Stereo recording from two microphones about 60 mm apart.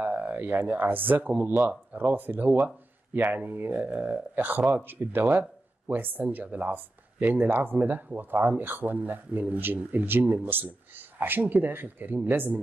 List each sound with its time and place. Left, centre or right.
0.0 s speech: right
1.7 s a sound: right
2.0 s speech: right